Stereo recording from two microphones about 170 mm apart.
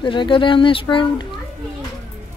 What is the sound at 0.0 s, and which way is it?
Speech, 30° left (ahead or behind).